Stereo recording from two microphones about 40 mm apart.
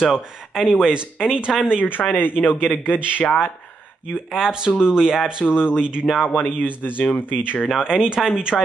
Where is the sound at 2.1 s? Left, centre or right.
Left.